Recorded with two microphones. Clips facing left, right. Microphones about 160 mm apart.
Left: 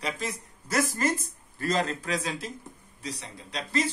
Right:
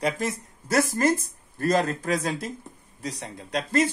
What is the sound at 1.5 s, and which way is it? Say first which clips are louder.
Speech: right 5 dB; 50° right (ahead or behind).